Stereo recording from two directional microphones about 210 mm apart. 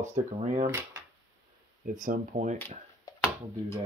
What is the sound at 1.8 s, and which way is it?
Speech, 40° right (ahead or behind).